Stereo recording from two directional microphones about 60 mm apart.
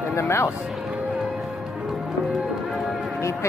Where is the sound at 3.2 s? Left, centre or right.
Left.